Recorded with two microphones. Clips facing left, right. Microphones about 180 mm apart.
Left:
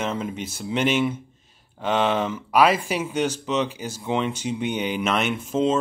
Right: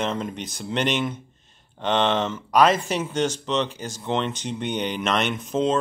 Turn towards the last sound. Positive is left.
turn(degrees=5)  # may be behind; listen again after turning